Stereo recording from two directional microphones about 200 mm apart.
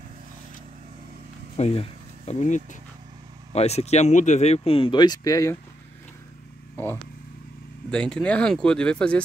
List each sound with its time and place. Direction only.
1.6 s speech: 30° left (ahead or behind)
6.8 s speech: 10° left (ahead or behind)